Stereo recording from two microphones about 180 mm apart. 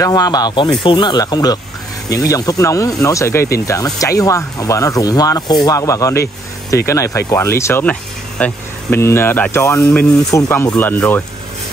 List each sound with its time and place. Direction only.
0.0 s speech: 20° left (ahead or behind)